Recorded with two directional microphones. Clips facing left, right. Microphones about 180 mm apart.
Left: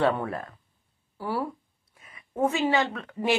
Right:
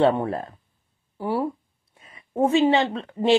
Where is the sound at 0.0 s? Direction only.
25° right (ahead or behind).